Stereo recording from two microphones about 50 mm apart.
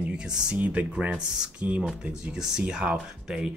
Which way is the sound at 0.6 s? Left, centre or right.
Right.